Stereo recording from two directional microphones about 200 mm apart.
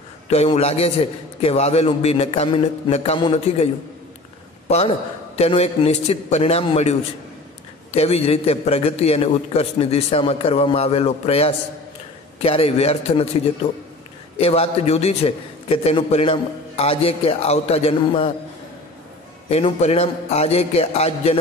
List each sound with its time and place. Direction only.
0.3 s a man's voice: 30° left (ahead or behind)
4.6 s a man's voice: 30° left (ahead or behind)
14.4 s a man's voice: 30° left (ahead or behind)
19.5 s a man's voice: 30° left (ahead or behind)